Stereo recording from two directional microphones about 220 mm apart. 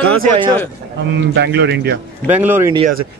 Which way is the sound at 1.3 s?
50° right (ahead or behind).